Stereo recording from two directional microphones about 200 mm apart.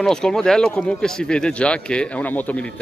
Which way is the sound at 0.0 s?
5° left (ahead or behind).